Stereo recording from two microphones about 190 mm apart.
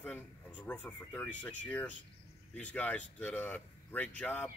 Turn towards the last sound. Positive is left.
turn(degrees=10)  # may be behind; listen again after turning